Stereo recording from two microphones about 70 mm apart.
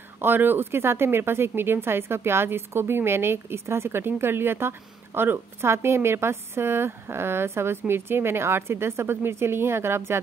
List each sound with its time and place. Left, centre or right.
0.2 s speech: right